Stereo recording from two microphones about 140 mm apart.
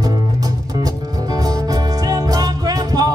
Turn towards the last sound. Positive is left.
turn(degrees=-25)  # may be behind; listen again after turning